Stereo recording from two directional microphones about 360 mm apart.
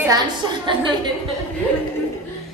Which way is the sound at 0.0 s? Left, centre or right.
Centre.